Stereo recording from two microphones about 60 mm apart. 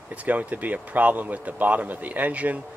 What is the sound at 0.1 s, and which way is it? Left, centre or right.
Speech, right.